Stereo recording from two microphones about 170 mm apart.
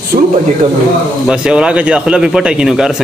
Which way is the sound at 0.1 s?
50° right (ahead or behind).